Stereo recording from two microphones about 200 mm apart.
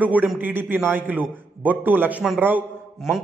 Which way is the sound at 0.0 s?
10° right (ahead or behind).